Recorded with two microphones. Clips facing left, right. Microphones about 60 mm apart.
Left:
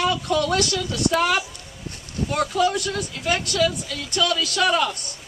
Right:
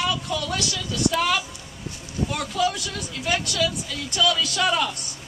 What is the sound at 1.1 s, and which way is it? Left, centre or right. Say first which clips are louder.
Speech: left 4 dB; left.